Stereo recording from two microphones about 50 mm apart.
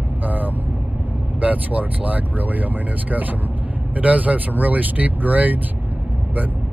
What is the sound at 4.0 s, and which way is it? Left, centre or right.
Speech, right.